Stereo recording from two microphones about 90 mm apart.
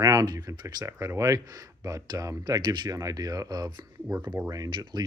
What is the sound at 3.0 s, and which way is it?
Speech, 45° right (ahead or behind).